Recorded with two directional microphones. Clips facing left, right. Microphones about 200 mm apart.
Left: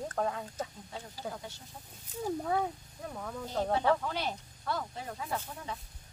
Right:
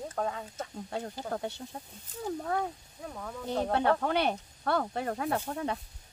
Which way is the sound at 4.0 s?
65° right (ahead or behind).